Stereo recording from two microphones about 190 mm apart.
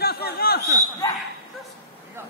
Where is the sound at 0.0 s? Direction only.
55° left (ahead or behind).